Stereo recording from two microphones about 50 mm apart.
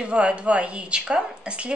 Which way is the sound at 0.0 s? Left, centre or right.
Right.